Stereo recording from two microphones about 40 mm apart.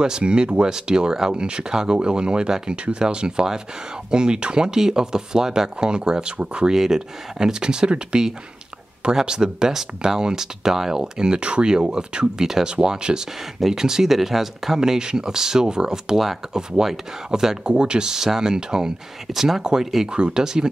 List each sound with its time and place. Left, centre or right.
0.0 s speech: right
6.7 s speech: centre
14.8 s speech: centre
17.6 s speech: right